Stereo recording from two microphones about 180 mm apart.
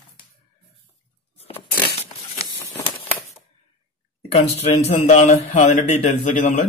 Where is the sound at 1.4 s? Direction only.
30° left (ahead or behind).